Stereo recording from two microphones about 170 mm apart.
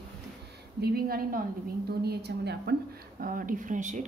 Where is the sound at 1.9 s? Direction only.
70° right (ahead or behind).